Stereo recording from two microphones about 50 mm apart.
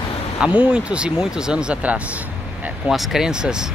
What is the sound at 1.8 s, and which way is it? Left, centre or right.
Vehicle, right.